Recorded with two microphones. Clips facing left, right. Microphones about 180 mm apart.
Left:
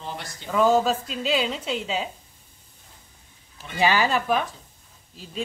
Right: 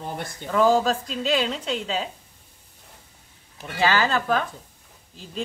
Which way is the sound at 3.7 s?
15° left (ahead or behind).